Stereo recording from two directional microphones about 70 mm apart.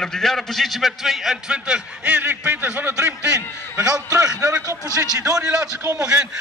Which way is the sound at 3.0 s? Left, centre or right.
Right.